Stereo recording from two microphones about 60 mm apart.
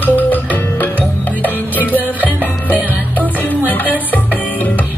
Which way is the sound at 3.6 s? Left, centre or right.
Left.